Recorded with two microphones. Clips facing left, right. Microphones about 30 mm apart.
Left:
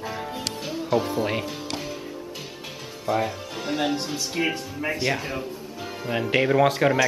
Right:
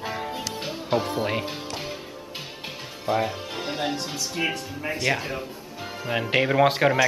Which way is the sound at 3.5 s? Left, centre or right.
Right.